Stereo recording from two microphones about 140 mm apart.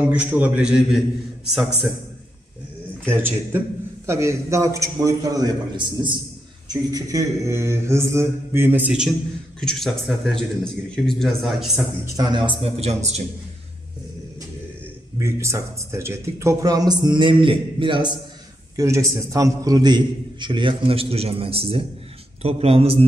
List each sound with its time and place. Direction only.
0.0 s a man's voice: 10° right (ahead or behind)
3.1 s a man's voice: 15° right (ahead or behind)
9.6 s speech: 5° left (ahead or behind)
12.2 s a man's voice: 35° right (ahead or behind); by 13.2 s 50° right (ahead or behind)
15.1 s a man's voice: 20° right (ahead or behind); by 18.1 s 35° right (ahead or behind)
18.8 s a man's voice: 20° right (ahead or behind); by 23.0 s 45° right (ahead or behind)